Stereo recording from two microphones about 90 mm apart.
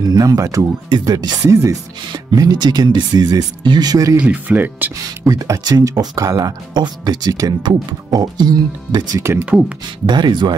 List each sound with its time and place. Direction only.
0.0 s speech: 50° right (ahead or behind)
0.4 s speech: 35° right (ahead or behind)
2.1 s speech: 50° right (ahead or behind)
4.2 s speech: 15° right (ahead or behind)
5.3 s speech: 50° right (ahead or behind)
9.2 s speech: 25° right (ahead or behind)
10.0 s speech: 60° right (ahead or behind)